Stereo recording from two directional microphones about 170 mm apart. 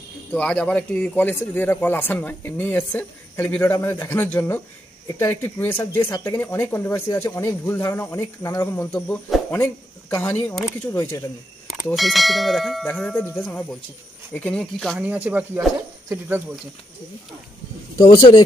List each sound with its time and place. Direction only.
0.3 s a man's voice: 5° left (ahead or behind)
11.6 s a sound: centre (ahead or behind)
12.8 s a man's voice: 10° left (ahead or behind)
15.0 s speech: 10° right (ahead or behind)
17.9 s speech: 25° left (ahead or behind)